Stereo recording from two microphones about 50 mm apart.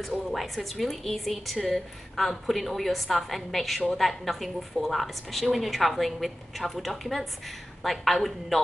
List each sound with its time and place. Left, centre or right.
0.0 s a woman's voice: centre